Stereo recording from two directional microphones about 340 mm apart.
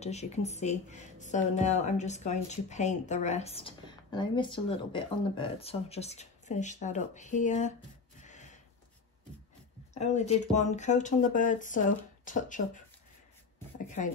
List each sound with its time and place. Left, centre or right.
0.0 s speech: centre
8.2 s a sound: left
9.9 s speech: centre